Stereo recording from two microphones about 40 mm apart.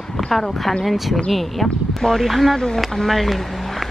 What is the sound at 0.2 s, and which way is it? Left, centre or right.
Speech, centre.